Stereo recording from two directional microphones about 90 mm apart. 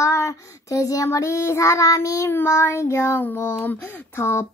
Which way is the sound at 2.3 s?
25° left (ahead or behind).